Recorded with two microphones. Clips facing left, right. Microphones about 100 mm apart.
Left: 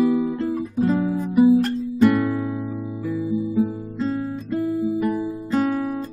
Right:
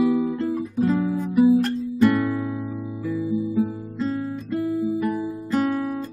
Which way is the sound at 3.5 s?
5° left (ahead or behind).